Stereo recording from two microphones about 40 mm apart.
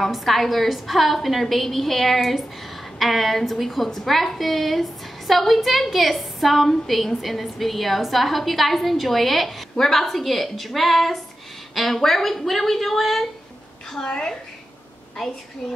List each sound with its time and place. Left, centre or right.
0.1 s a woman's voice: centre
13.9 s a woman's voice: centre